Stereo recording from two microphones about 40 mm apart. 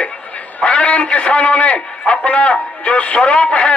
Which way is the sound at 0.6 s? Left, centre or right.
Left.